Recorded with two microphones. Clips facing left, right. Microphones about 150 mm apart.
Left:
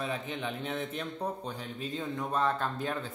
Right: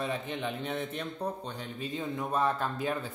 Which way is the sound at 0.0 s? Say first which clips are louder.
Right 1 dB; centre (ahead or behind).